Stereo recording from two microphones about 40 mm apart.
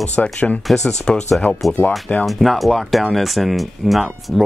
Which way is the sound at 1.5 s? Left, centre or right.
Left.